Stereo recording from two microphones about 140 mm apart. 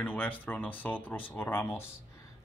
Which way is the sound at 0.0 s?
10° left (ahead or behind).